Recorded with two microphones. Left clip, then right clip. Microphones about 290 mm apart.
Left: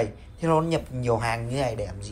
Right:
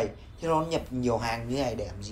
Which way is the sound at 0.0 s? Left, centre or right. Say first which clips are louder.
Left 3 dB; centre.